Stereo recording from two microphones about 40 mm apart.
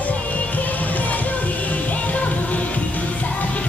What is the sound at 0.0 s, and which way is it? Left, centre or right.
Music, left.